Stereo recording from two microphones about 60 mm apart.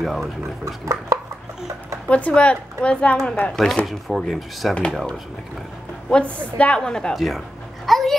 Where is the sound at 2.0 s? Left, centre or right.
Left; by 4.7 s centre.